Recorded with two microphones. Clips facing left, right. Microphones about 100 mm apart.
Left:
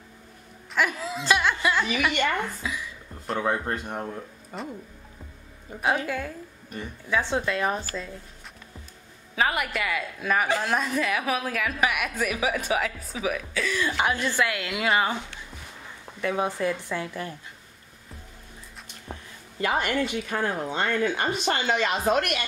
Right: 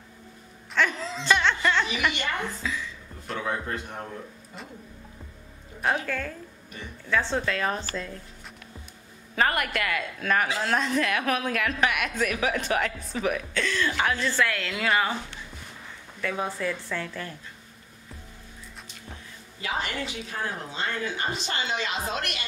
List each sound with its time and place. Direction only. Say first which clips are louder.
0.7 s a woman's voice: even; 10° left (ahead or behind)
2.1 s a woman's voice: left 5 dB; 50° left (ahead or behind)
2.6 s a sound: right 1 dB; 15° left (ahead or behind)
3.4 s speech: left 3 dB; 40° left (ahead or behind)
6.0 s a woman's voice: left 1 dB; 15° left (ahead or behind)
9.3 s a woman's voice: even; 5° left (ahead or behind); by 15.1 s 20° left (ahead or behind)
16.2 s a woman's voice: left 4 dB; 25° left (ahead or behind)
19.6 s speech: left 6 dB; 55° left (ahead or behind)